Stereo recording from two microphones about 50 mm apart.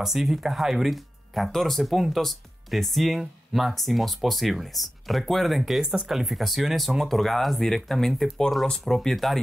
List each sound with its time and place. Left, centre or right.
0.0 s speech: centre